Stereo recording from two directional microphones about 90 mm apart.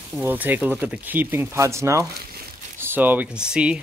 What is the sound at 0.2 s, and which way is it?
Speech, 20° right (ahead or behind).